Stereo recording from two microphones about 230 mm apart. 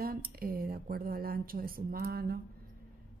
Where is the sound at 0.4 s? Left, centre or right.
Right.